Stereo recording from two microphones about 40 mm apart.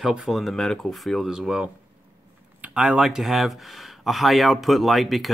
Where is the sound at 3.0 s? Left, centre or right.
Centre.